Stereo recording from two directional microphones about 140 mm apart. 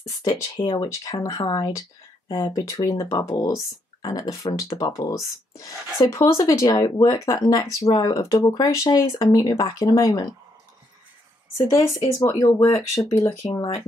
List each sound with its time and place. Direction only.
0.0 s speech: 25° left (ahead or behind)
11.5 s speech: 30° left (ahead or behind)
13.5 s speech: 35° left (ahead or behind)